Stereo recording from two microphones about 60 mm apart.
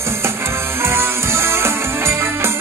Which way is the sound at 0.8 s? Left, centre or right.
Right.